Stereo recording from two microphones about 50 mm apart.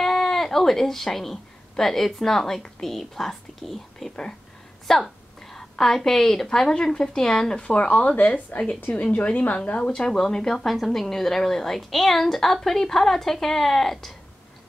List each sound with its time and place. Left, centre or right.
0.0 s a woman's voice: centre